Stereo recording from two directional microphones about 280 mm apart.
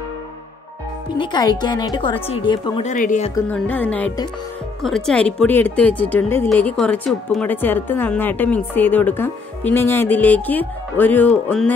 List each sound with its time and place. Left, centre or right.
1.1 s speech: centre
3.3 s a woman's voice: centre